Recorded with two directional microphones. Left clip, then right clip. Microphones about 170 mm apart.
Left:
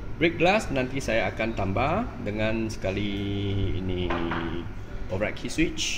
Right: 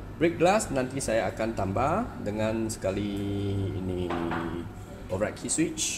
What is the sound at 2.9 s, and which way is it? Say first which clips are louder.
Speech: left 2 dB; 50° right (ahead or behind).